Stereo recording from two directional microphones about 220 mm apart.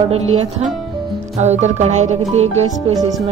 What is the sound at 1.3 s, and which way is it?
Speech, 30° right (ahead or behind).